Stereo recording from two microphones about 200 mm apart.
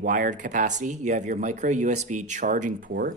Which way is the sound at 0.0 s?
40° right (ahead or behind).